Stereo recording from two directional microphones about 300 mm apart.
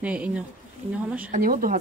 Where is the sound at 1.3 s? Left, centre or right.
Right.